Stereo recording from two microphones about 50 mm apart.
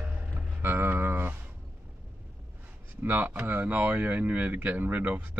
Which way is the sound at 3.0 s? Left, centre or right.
Right.